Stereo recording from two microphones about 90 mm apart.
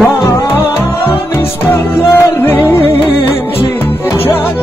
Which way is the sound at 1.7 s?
25° left (ahead or behind).